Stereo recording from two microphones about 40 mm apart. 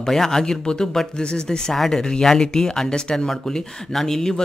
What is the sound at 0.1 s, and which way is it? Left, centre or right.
Speech, centre.